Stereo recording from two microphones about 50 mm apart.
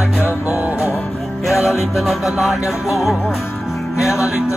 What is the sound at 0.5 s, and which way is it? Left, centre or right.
Music, right.